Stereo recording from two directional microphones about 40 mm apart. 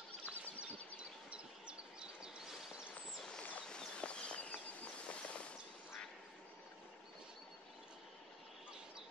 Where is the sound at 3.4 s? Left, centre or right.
Left.